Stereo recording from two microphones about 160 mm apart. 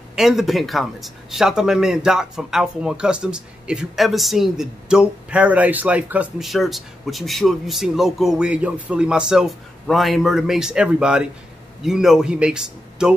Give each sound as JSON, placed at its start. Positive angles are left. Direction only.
{"t": 0.1, "sound": "speech", "side_deg": 0}